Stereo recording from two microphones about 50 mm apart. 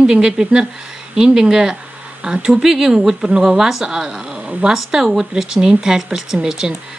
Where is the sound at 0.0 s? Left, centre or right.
Centre.